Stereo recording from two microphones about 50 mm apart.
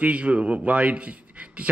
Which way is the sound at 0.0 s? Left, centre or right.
Right.